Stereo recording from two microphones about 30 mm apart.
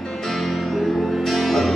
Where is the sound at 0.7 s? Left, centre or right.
Centre.